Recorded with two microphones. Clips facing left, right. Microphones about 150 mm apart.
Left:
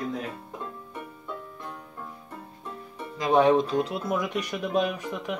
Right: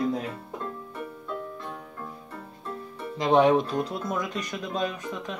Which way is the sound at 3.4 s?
10° right (ahead or behind).